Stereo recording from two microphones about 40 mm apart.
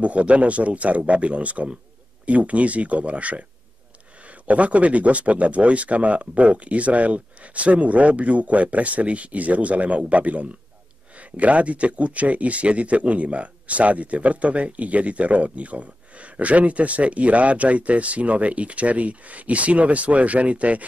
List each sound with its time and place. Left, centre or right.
0.0 s speech: right